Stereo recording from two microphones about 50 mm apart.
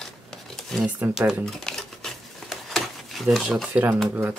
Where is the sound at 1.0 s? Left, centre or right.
Right.